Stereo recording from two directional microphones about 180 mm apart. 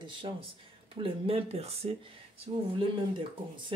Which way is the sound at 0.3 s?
25° right (ahead or behind).